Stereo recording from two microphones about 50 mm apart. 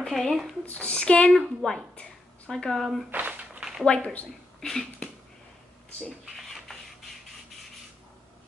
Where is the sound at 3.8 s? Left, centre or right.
Left.